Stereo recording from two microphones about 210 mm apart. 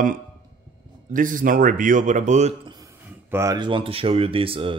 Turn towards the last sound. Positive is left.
turn(degrees=-25)  # may be behind; listen again after turning